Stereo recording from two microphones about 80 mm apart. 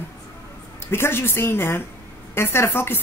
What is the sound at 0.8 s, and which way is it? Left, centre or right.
A woman's voice, left.